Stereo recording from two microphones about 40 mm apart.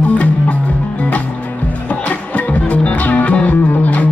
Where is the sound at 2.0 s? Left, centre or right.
Left.